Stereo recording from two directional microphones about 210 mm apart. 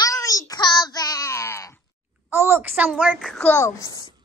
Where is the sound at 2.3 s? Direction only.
10° right (ahead or behind); by 3.7 s 10° left (ahead or behind).